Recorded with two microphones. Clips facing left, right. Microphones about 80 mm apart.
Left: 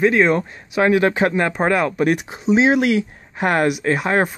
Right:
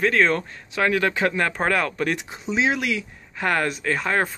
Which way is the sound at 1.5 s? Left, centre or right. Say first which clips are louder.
Left 5 dB; centre.